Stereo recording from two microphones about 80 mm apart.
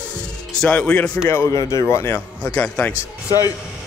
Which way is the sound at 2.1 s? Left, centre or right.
Centre.